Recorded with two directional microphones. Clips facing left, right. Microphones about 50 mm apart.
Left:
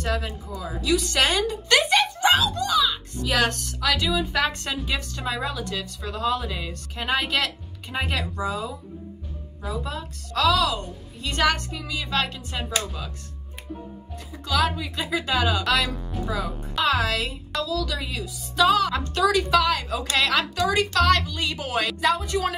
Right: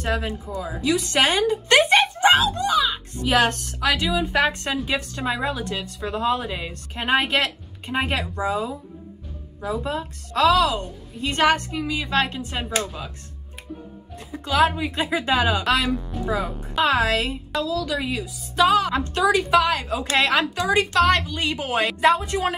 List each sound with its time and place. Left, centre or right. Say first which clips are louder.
0.0 s a woman's voice: right 2 dB; right
9.8 s a woman's voice: right 5 dB; right
14.3 s a woman's voice: right 4 dB; right